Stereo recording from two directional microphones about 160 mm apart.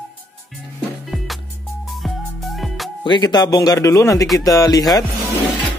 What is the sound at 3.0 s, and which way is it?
Speech, 30° left (ahead or behind).